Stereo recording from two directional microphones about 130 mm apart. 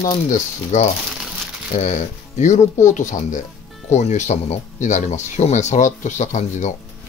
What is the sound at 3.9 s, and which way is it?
Speech, 60° left (ahead or behind).